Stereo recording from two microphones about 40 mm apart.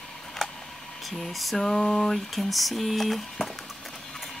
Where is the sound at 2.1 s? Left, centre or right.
Centre.